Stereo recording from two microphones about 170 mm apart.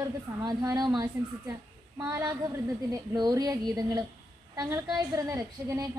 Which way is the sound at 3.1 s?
25° right (ahead or behind).